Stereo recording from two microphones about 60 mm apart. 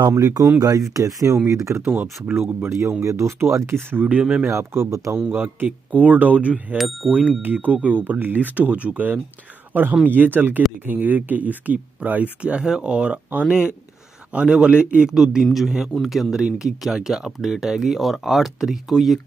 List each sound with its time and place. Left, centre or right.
0.1 s speech: right
0.9 s speech: right
1.9 s speech: right
2.6 s speech: right
4.2 s a man's voice: centre
4.5 s speech: right
5.3 s speech: right
9.7 s a sound: right
10.0 s a man's voice: right; by 19.1 s centre